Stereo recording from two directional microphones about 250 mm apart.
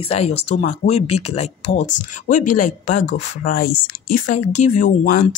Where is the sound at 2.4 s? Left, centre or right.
Left.